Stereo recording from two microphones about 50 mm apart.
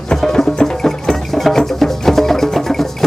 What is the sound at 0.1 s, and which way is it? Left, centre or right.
Music, centre.